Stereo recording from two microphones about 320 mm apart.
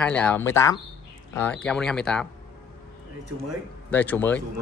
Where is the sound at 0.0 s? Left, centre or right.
Centre.